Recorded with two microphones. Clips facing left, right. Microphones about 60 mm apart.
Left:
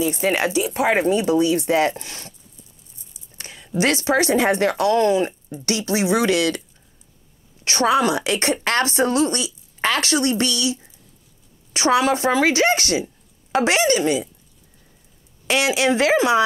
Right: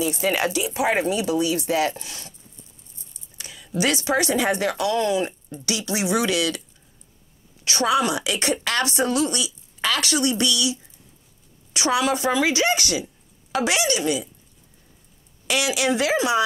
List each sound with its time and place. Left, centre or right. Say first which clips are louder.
0.0 s speech: left 2 dB; centre
0.6 s speech: left 3 dB; left
3.3 s a sound: left 2 dB; left
3.8 s speech: left 3 dB; left
7.6 s speech: left 3 dB; left
15.4 s speech: left 4 dB; left